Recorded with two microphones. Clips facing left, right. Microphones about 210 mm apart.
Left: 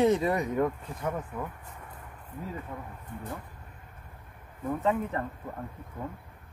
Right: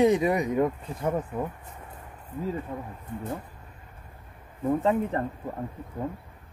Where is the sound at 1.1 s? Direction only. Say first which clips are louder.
Right 6 dB; 35° right (ahead or behind).